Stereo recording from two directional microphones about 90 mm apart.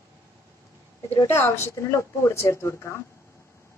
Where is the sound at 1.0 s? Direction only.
25° left (ahead or behind).